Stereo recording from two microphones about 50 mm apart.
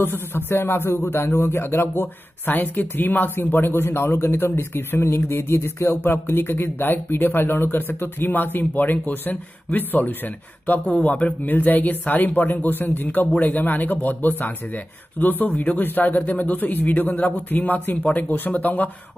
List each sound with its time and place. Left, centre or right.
0.0 s speech: left
5.9 s speech: left